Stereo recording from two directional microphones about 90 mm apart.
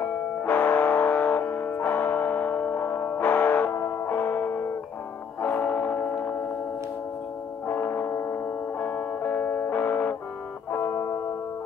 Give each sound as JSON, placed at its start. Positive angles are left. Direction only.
{"t": 0.0, "sound": "music", "side_deg": 20}
{"t": 7.6, "sound": "music", "side_deg": 25}